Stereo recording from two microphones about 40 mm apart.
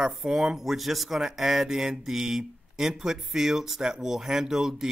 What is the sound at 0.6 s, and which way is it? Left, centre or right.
Speech, centre.